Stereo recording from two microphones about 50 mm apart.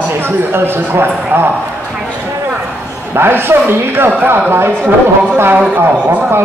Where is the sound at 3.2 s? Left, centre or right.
Right.